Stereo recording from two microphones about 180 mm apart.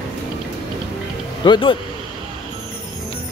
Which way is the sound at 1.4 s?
30° left (ahead or behind).